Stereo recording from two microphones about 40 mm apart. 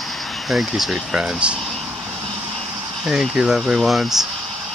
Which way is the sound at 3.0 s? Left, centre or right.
Centre.